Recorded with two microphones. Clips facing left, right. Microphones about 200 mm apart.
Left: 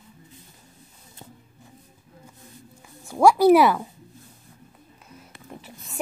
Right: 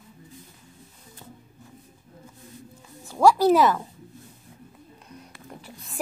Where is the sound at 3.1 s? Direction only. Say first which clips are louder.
Left 3 dB; 10° left (ahead or behind).